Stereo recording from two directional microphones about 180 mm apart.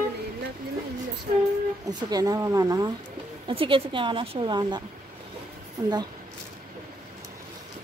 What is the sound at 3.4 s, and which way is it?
Speech, 30° right (ahead or behind).